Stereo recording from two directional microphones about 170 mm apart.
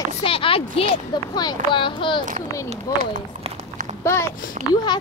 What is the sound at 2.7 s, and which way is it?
Run, 40° right (ahead or behind).